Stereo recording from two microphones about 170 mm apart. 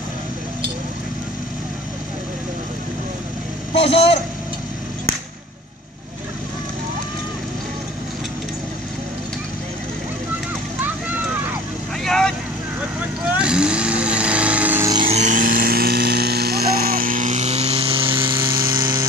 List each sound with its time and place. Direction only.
3.7 s speech: 35° left (ahead or behind)
12.0 s vehicle: 5° left (ahead or behind)
13.4 s vehicle: 5° right (ahead or behind)
15.0 s electric toothbrush: 45° right (ahead or behind)
18.7 s a sound: 25° right (ahead or behind)